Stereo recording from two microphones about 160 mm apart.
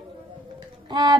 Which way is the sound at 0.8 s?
25° right (ahead or behind).